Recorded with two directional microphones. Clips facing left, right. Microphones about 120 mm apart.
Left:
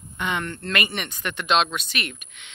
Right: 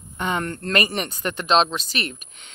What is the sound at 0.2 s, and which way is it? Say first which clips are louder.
Speech: right 3 dB; 40° right (ahead or behind).